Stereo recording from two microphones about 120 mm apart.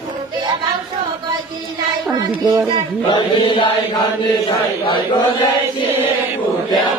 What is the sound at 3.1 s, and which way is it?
Chant, 45° left (ahead or behind).